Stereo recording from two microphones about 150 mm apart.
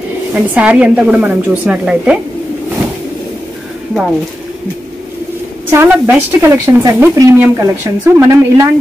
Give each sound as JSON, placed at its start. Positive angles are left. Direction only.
{"t": 0.3, "sound": "a woman's voice", "side_deg": -10}
{"t": 5.7, "sound": "a woman's voice", "side_deg": -15}